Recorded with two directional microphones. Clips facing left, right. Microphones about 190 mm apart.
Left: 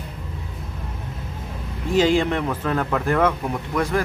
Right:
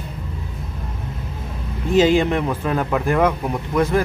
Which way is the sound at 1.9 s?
20° right (ahead or behind).